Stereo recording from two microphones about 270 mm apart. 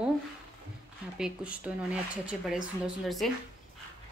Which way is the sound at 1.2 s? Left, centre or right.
Centre.